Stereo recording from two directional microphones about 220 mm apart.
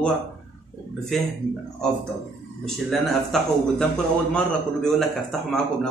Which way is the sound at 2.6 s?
Centre (ahead or behind).